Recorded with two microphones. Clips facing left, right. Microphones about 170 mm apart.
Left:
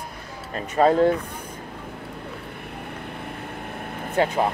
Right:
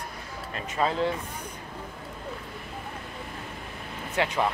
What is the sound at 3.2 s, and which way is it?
Vehicle, 60° left (ahead or behind).